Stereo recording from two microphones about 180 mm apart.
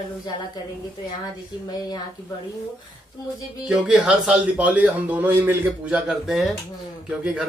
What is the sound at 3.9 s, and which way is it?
A man's voice, 5° right (ahead or behind).